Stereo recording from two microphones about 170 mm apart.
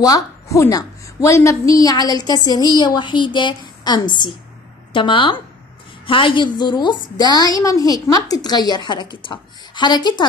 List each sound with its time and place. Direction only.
0.0 s a woman's voice: 20° left (ahead or behind)